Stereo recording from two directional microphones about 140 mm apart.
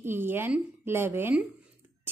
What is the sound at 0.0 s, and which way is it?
A woman's voice, 15° right (ahead or behind).